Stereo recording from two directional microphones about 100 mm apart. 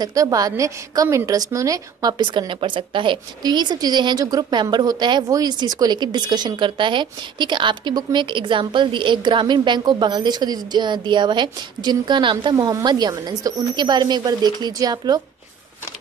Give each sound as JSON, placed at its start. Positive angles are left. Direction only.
{"t": 0.0, "sound": "speech", "side_deg": -35}